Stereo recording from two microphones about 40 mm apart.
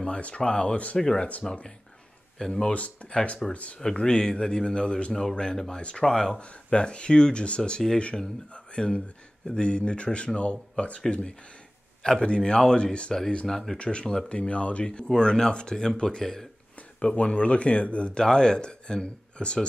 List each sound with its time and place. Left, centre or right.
0.0 s speech: left
2.7 s speech: left
3.1 s speech: left
3.5 s speech: left
4.0 s speech: centre
6.0 s speech: centre
6.3 s speech: left
12.0 s speech: left
13.5 s speech: centre
13.7 s speech: left
15.1 s speech: centre
17.0 s speech: left